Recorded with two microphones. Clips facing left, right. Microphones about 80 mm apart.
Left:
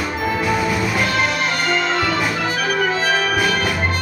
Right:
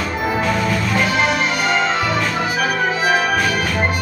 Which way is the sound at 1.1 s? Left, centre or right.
Centre.